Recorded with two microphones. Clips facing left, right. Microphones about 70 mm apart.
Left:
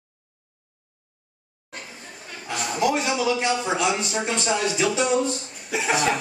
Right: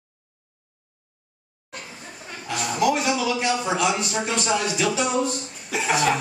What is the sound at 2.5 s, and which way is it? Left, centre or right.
Speech, centre.